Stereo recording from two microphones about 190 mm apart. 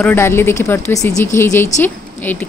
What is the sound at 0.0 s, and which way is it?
A woman's voice, 10° left (ahead or behind).